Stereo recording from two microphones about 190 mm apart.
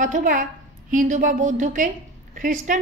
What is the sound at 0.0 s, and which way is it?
A woman's voice, 45° right (ahead or behind).